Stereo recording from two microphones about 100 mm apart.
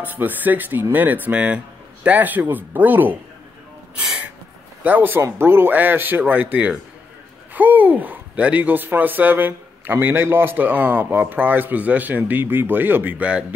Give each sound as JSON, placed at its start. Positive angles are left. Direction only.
{"t": 0.0, "sound": "speech", "side_deg": -20}
{"t": 3.9, "sound": "gasp", "side_deg": -10}
{"t": 4.8, "sound": "speech", "side_deg": -20}